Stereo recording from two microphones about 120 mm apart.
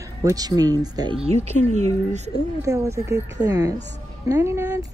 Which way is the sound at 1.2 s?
65° right (ahead or behind).